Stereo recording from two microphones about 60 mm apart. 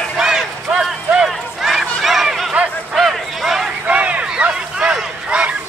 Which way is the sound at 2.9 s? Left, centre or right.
Centre.